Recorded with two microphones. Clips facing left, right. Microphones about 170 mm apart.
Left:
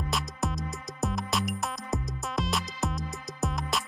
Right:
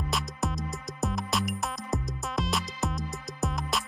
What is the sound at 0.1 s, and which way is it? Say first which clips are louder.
Music: even; centre (ahead or behind).